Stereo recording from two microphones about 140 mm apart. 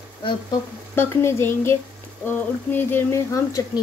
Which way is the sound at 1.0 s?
20° left (ahead or behind).